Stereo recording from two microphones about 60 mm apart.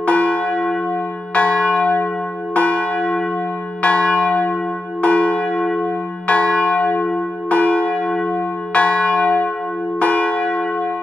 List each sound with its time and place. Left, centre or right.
0.0 s church bell: left